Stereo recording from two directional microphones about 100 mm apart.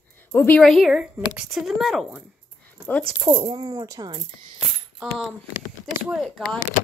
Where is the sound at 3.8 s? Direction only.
40° right (ahead or behind).